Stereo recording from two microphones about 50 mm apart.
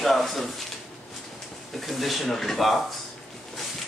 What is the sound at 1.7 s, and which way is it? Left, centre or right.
Speech, centre.